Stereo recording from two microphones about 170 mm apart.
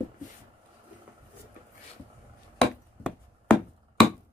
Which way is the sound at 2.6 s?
5° left (ahead or behind).